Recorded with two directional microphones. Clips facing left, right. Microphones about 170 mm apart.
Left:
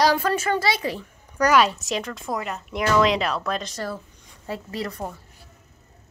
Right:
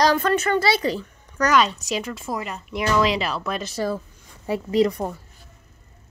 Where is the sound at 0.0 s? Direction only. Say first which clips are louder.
Right 1 dB; 5° left (ahead or behind); by 5.1 s 15° right (ahead or behind).